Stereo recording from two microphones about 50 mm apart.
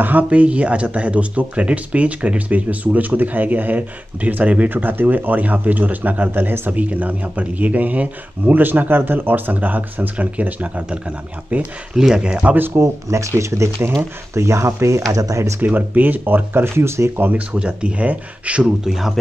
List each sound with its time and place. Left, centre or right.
0.0 s speech: right
11.9 s speech: centre
12.4 s speech: right
12.7 s speech: right
15.6 s speech: right
16.6 s speech: right
17.5 s speech: right
18.9 s speech: centre